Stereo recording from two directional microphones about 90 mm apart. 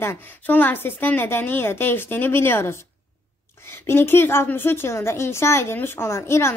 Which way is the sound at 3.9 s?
25° left (ahead or behind).